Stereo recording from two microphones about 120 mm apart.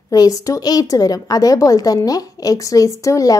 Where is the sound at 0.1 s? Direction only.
30° left (ahead or behind).